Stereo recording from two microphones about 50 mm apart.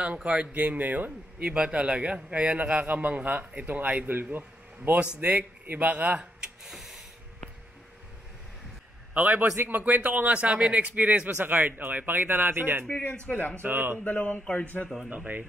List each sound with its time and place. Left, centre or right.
0.0 s a man's voice: right
1.4 s a man's voice: right
5.0 s a man's voice: right
6.7 s printer: centre
9.1 s speech: right
13.3 s speech: left
13.6 s a man's voice: right
14.2 s speech: centre
15.0 s speech: right